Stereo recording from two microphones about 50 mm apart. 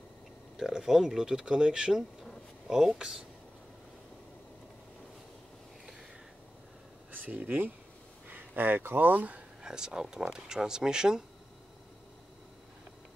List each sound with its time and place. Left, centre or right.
0.6 s speech: centre
7.1 s speech: right
9.6 s speech: centre